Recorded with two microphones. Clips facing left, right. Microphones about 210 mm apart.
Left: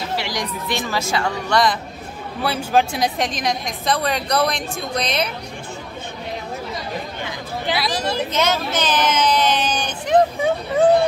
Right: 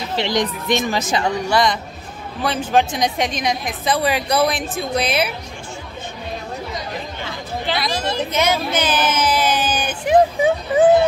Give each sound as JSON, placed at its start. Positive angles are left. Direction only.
{"t": 0.1, "sound": "speech", "side_deg": -20}
{"t": 1.5, "sound": "a woman's voice", "side_deg": 0}
{"t": 7.7, "sound": "a woman's voice", "side_deg": 0}
{"t": 8.3, "sound": "speech", "side_deg": -10}